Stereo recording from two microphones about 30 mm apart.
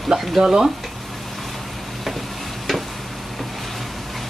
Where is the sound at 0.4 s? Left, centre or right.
Right.